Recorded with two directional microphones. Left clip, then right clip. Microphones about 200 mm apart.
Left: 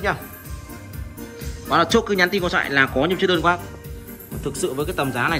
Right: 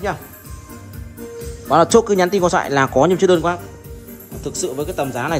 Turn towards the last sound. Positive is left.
turn(degrees=-15)  # may be behind; listen again after turning